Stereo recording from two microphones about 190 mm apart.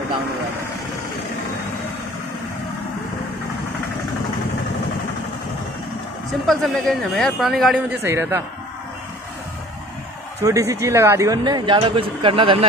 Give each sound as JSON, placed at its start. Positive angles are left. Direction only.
{"t": 6.4, "sound": "a man's voice", "side_deg": 0}
{"t": 10.4, "sound": "speech", "side_deg": -15}